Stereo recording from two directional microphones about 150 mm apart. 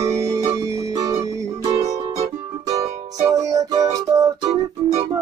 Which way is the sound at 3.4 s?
20° right (ahead or behind).